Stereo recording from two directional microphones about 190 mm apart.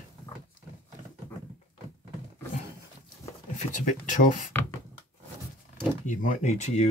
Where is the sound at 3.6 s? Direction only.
40° left (ahead or behind).